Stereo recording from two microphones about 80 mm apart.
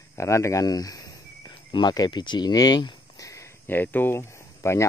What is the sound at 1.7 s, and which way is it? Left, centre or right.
Speech, left.